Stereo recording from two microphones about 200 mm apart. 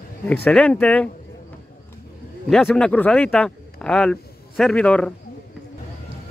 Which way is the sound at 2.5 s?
5° left (ahead or behind).